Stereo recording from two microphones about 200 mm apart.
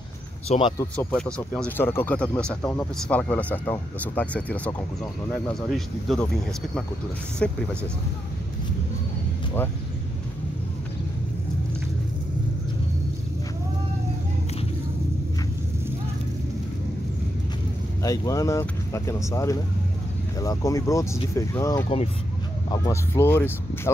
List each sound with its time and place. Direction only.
0.5 s speech: 25° left (ahead or behind)
0.7 s speech: 5° left (ahead or behind)
18.0 s speech: 15° left (ahead or behind)
21.8 s speech: 30° left (ahead or behind)
22.7 s speech: 15° left (ahead or behind)